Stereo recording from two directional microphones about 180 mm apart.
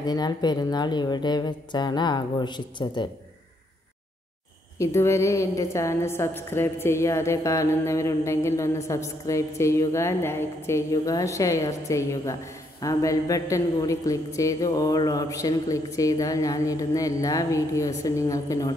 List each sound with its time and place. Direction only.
0.0 s a man's voice: 20° left (ahead or behind)
4.7 s a woman's voice: 15° left (ahead or behind)